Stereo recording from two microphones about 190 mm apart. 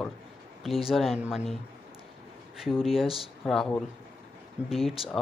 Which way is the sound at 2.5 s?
Centre (ahead or behind).